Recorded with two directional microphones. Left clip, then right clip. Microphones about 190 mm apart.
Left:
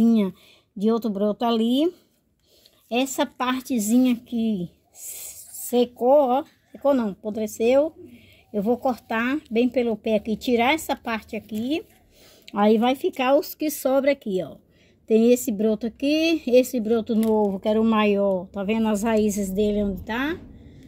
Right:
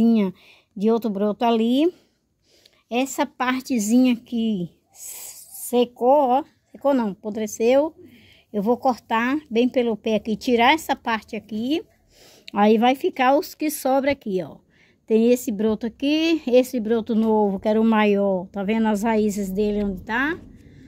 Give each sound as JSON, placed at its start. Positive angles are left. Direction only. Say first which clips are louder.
{"t": 0.0, "sound": "a woman's voice", "louder": "right 1 dB", "side_deg": -10}
{"t": 19.1, "sound": "a woman's voice", "louder": "even", "side_deg": -5}